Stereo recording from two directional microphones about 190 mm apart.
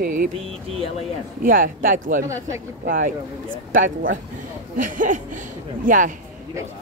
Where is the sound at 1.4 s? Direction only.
45° right (ahead or behind).